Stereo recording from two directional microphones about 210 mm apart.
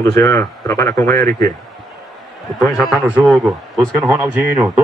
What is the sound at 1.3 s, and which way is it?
Speech, 40° right (ahead or behind).